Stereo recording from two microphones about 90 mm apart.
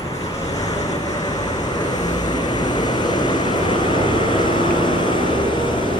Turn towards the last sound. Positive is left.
turn(degrees=55)  # may be behind; listen again after turning